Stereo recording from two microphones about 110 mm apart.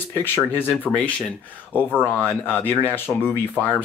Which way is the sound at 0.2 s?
20° left (ahead or behind).